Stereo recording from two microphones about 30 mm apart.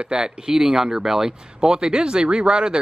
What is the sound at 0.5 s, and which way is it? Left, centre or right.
Speech, centre.